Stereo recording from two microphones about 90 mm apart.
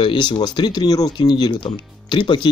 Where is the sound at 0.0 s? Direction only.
65° left (ahead or behind).